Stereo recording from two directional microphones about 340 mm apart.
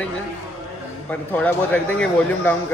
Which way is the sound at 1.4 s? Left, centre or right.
Centre.